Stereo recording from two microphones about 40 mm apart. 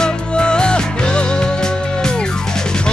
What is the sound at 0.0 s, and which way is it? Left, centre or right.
Music, left.